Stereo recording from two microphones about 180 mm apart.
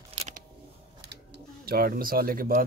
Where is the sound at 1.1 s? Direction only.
65° right (ahead or behind).